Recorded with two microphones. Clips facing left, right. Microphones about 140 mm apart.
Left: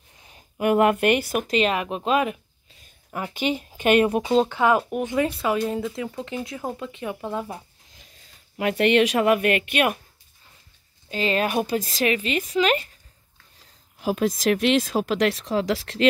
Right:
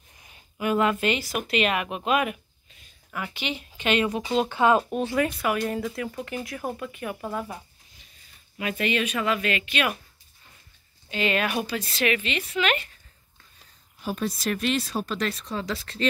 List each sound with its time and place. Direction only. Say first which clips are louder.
0.6 s speech: left 5 dB; 60° left (ahead or behind)
1.5 s speech: left 2 dB; 30° left (ahead or behind)
3.1 s speech: left 6 dB; 40° left (ahead or behind)
4.5 s speech: even; 20° right (ahead or behind)
4.8 s speech: left 1 dB; 15° left (ahead or behind)
5.2 s speech: left 5 dB; 25° left (ahead or behind)
8.5 s speech: left 8 dB; 65° left (ahead or behind)
11.1 s a woman's voice: left 2 dB; 35° left (ahead or behind)
14.0 s speech: left 6 dB; 90° left